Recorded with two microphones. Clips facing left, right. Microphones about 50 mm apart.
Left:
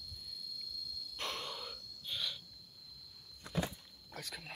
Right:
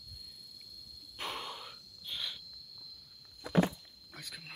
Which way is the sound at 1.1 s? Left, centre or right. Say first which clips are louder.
Right 2 dB; centre.